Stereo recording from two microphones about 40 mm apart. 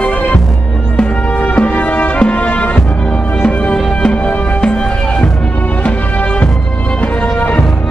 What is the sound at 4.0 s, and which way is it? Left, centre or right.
Music, left.